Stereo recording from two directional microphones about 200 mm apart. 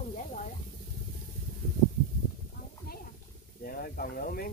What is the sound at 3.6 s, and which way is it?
Speech, 45° left (ahead or behind).